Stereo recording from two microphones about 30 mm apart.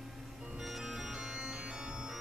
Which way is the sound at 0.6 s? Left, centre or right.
Centre.